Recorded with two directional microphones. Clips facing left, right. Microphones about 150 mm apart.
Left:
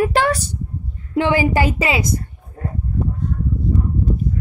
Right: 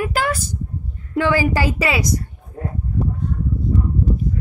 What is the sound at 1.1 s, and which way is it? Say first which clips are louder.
Speech: left 1 dB; 20° left (ahead or behind).